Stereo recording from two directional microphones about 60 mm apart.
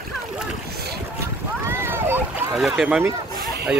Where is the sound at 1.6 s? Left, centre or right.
Right.